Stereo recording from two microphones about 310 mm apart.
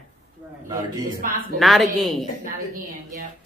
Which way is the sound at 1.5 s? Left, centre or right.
Centre.